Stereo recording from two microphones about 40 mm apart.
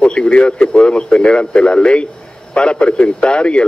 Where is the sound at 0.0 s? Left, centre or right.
Left.